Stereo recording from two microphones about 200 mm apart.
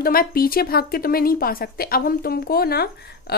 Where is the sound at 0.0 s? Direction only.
45° left (ahead or behind).